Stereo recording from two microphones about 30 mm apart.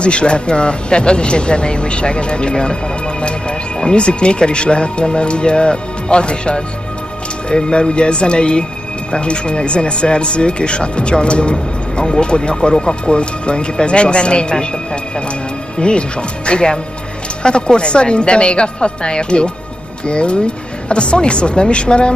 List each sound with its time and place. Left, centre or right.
0.0 s speech: left
15.8 s speech: left